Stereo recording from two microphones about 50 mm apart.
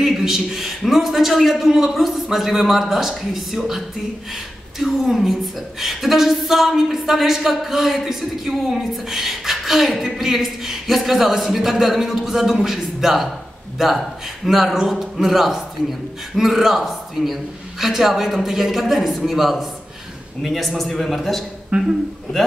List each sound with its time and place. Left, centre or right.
0.0 s speech: centre
21.7 s a man's voice: right